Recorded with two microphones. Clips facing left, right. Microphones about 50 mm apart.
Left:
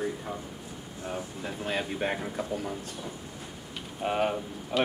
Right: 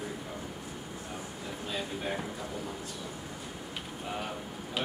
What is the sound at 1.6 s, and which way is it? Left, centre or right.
Speech, left.